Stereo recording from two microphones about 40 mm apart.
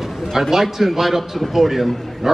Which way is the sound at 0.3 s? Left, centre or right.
Centre.